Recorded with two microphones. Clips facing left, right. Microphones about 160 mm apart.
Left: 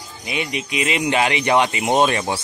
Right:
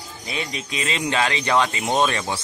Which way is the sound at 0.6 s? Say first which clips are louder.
Left 5 dB; 35° right (ahead or behind).